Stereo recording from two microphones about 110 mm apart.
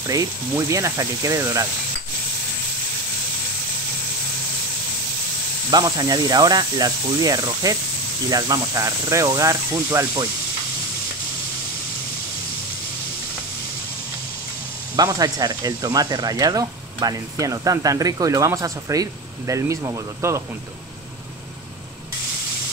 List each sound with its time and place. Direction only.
0.0 s speech: 30° right (ahead or behind)
5.7 s speech: 40° right (ahead or behind)
15.0 s speech: 35° right (ahead or behind)